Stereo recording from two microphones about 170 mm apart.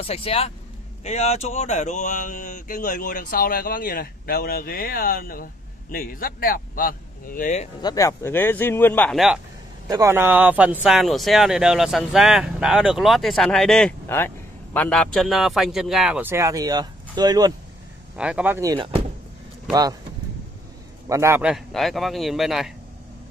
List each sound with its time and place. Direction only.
0.0 s speech: 35° left (ahead or behind)
7.8 s speech: 20° left (ahead or behind)
9.8 s speech: 20° right (ahead or behind)
18.1 s speech: 5° right (ahead or behind)
18.8 s speech: 30° right (ahead or behind)
21.1 s speech: 15° right (ahead or behind)
21.5 s speech: centre (ahead or behind)